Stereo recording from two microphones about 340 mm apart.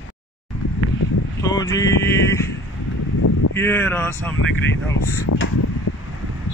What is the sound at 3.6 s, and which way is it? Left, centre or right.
Speech, centre.